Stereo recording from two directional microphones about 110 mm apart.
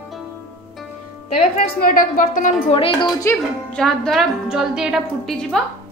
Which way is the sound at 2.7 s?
60° left (ahead or behind).